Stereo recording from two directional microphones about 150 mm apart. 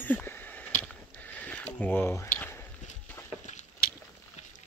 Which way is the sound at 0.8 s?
10° left (ahead or behind).